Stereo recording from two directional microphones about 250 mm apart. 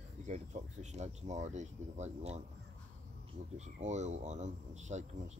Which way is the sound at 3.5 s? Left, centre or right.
Right.